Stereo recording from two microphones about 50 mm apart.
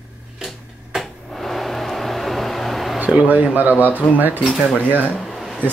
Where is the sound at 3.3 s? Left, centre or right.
Right.